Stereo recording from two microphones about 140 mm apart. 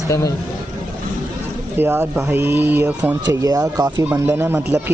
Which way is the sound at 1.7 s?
15° right (ahead or behind).